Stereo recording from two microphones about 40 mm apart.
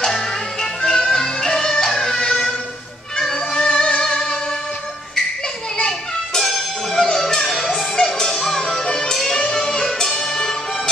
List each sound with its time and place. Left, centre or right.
0.0 s music: centre
6.4 s music: centre
7.1 s music: centre